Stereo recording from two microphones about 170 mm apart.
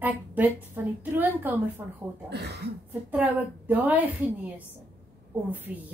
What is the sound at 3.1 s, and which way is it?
A woman's voice, 10° right (ahead or behind).